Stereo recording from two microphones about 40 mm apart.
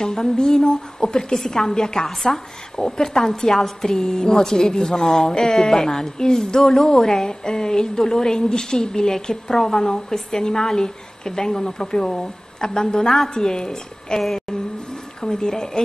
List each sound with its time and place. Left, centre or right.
0.0 s a woman's voice: centre
15.2 s a woman's voice: centre